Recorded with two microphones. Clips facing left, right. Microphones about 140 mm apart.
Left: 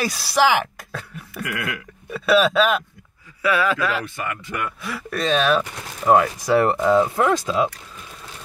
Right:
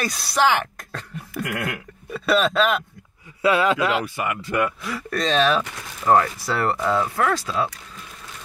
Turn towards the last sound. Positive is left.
turn(degrees=20)  # may be behind; listen again after turning